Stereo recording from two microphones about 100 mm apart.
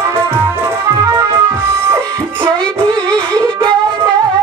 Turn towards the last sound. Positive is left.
turn(degrees=10)  # may be behind; listen again after turning